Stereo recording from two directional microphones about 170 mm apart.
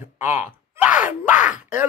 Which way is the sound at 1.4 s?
45° left (ahead or behind).